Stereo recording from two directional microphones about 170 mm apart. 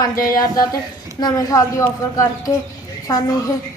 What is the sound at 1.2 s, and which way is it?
A woman's voice, 20° left (ahead or behind).